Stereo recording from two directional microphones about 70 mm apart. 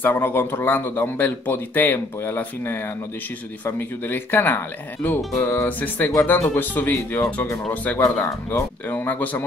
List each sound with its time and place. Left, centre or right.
0.0 s a man's voice: left